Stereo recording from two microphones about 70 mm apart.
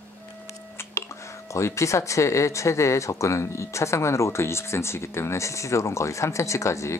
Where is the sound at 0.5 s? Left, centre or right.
Left.